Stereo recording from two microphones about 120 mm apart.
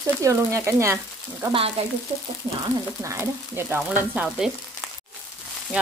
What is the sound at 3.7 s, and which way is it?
Sizzle, 15° right (ahead or behind).